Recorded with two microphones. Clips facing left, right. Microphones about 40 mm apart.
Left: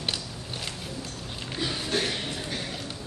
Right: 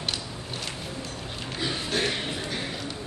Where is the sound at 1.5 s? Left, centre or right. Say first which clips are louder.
Even; centre.